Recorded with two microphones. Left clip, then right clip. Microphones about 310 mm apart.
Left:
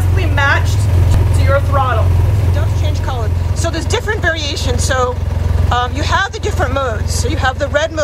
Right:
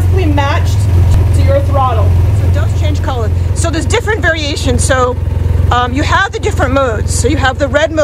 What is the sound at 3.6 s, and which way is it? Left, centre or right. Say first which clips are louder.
Vehicle: right 4 dB; right.